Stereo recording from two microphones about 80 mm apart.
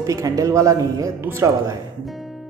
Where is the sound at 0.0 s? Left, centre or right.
Right.